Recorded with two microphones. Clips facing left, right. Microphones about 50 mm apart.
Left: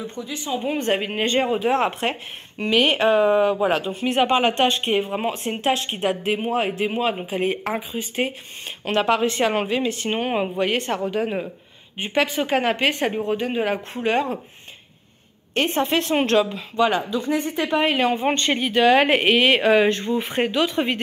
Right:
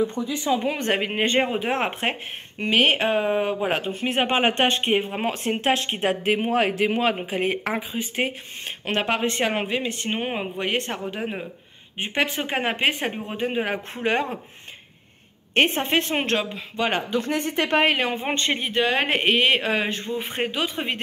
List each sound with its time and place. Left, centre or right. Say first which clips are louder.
0.2 s speech: right 4 dB; centre
0.7 s speech: left 1 dB; right
10.0 s speech: left 4 dB; centre
10.6 s a woman's voice: left 4 dB; centre; by 14.4 s right
15.8 s speech: left 3 dB; right
17.1 s speech: left 1 dB; right
17.8 s speech: left 2 dB; right
18.2 s a woman's voice: left 4 dB; centre